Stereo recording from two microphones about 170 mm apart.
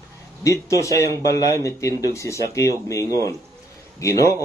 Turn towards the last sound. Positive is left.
turn(degrees=20)  # may be behind; listen again after turning